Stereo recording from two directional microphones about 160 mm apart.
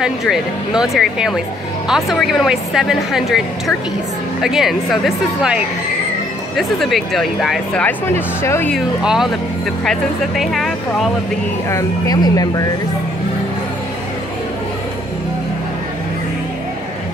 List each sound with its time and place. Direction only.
0.0 s a woman's voice: 5° right (ahead or behind)
7.8 s speech: 15° left (ahead or behind)
8.7 s a woman's voice: 5° right (ahead or behind)
11.7 s speech: 20° left (ahead or behind)